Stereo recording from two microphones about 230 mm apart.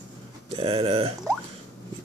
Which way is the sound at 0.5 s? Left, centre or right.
Right.